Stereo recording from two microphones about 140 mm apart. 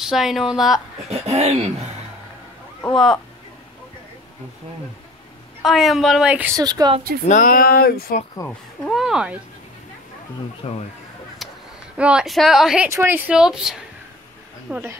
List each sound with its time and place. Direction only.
0.0 s a woman's voice: 5° right (ahead or behind)
1.1 s speech: 50° right (ahead or behind)
5.6 s a woman's voice: centre (ahead or behind)
6.5 s speech: 30° right (ahead or behind)
7.2 s speech: 75° left (ahead or behind); by 8.2 s 90° left
8.4 s speech: 20° left (ahead or behind)
8.8 s a woman's voice: 5° right (ahead or behind)
10.6 s speech: 50° left (ahead or behind)
12.0 s a woman's voice: 5° right (ahead or behind)
12.9 s speech: 15° right (ahead or behind)
13.3 s a woman's voice: 5° right (ahead or behind)
14.7 s speech: 15° right (ahead or behind)